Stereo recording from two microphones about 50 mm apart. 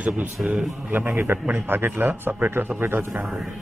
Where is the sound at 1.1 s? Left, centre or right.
Right.